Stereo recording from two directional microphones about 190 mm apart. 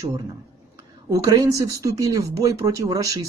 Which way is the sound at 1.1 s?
20° right (ahead or behind).